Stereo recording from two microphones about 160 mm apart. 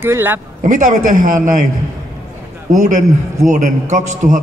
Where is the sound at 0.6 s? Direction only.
55° right (ahead or behind).